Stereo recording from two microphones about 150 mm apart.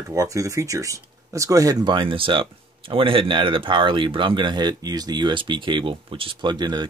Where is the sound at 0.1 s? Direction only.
20° right (ahead or behind).